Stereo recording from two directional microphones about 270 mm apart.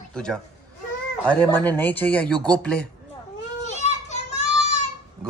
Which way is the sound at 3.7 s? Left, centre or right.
Left.